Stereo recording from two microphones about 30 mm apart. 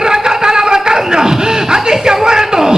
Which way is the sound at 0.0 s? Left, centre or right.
Right.